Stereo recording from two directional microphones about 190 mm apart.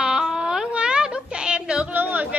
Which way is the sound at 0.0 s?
5° right (ahead or behind).